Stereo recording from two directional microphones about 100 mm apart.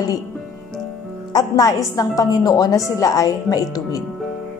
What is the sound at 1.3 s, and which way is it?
A woman's voice, 40° left (ahead or behind).